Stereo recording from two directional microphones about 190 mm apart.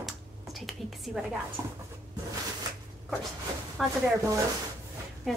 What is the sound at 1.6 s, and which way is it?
Speech, 15° right (ahead or behind).